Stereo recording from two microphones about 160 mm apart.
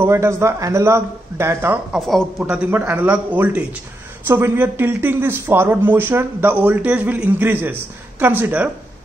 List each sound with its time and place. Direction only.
0.0 s speech: 15° right (ahead or behind)
2.0 s speech: centre (ahead or behind)
2.4 s speech: 10° right (ahead or behind)